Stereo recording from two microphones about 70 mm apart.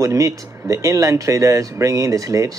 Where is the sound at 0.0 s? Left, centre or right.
Right.